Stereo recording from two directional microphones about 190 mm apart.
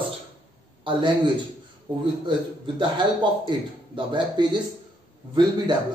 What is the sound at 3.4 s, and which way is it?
Speech, 25° right (ahead or behind).